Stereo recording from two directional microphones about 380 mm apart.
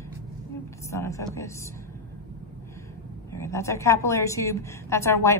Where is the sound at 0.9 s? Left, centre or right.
Centre.